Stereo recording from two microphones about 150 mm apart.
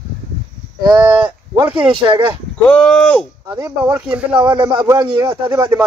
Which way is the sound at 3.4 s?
30° right (ahead or behind).